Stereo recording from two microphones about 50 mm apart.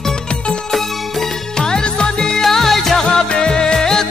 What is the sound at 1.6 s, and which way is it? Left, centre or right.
Music, centre.